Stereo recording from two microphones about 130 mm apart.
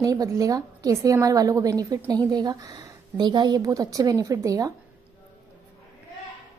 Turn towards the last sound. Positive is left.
turn(degrees=-25)  # may be behind; listen again after turning